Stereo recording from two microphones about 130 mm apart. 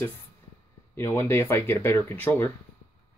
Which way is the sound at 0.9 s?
20° left (ahead or behind).